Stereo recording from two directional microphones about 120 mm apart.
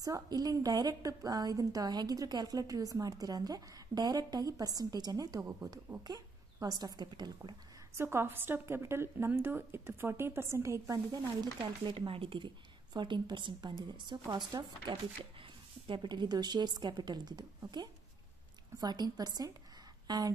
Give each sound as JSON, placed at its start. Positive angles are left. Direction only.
{"t": 0.0, "sound": "a woman's voice", "side_deg": -30}
{"t": 7.9, "sound": "a woman's voice", "side_deg": -20}
{"t": 11.8, "sound": "a woman's voice", "side_deg": -45}